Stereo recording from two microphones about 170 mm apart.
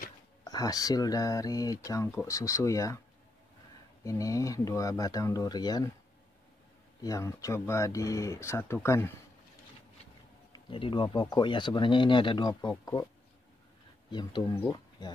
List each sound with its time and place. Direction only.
0.4 s speech: 20° left (ahead or behind)
4.0 s speech: 20° left (ahead or behind)
7.0 s speech: 20° left (ahead or behind)
10.5 s speech: 30° left (ahead or behind)
14.5 s speech: 20° left (ahead or behind)